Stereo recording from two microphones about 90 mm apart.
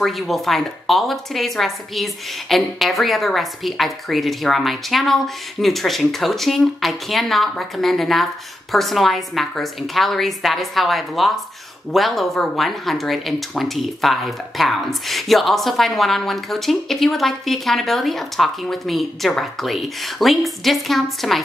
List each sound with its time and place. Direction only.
0.0 s speech: centre (ahead or behind)